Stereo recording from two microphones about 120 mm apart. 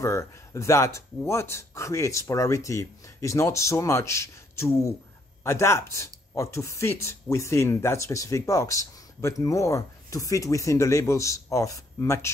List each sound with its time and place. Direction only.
0.0 s speech: 25° left (ahead or behind)